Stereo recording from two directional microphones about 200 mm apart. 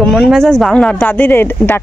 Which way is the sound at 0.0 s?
Centre (ahead or behind).